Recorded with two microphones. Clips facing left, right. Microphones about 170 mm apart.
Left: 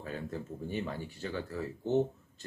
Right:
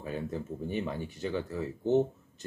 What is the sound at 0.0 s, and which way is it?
A man's voice, 15° right (ahead or behind).